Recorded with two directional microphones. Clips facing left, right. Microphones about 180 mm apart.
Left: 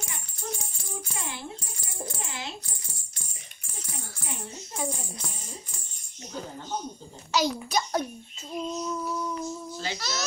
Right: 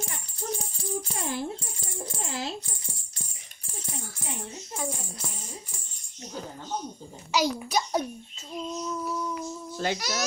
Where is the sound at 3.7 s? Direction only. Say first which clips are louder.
Right 3 dB; 25° right (ahead or behind).